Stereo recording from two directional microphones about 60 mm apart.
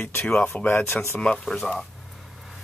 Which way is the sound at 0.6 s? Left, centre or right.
Left.